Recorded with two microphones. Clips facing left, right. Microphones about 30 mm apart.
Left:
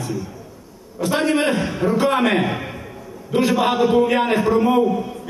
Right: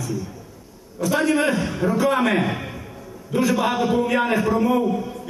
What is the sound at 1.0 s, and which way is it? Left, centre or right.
Speech, left.